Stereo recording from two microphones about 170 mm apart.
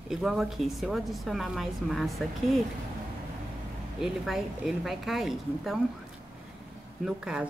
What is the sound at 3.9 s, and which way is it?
A woman's voice, centre (ahead or behind).